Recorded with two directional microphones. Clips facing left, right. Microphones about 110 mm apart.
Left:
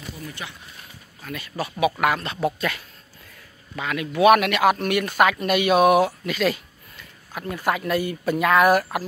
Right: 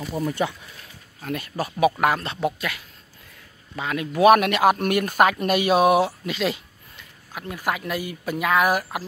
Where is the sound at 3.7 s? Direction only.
30° right (ahead or behind).